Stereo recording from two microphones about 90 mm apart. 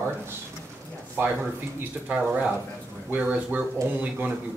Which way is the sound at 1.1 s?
20° right (ahead or behind).